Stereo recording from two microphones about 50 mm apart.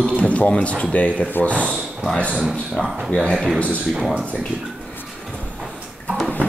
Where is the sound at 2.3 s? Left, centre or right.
Centre.